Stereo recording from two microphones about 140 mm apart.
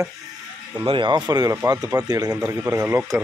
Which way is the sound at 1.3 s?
25° right (ahead or behind).